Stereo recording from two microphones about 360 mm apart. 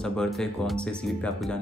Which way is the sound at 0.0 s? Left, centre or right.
Centre.